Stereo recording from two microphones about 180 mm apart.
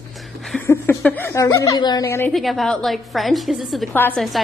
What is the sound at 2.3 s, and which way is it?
A woman's voice, centre (ahead or behind).